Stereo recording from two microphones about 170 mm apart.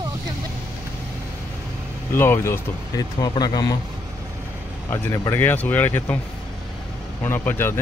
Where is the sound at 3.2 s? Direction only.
25° left (ahead or behind).